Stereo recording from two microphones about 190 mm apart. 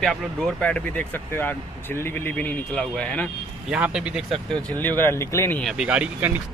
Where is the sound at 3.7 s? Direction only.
5° right (ahead or behind).